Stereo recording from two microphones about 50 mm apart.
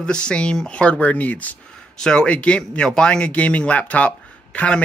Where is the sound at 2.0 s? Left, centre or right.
Centre.